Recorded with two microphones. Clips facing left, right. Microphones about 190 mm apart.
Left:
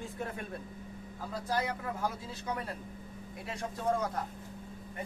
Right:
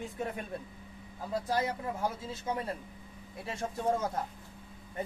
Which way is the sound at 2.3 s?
25° right (ahead or behind).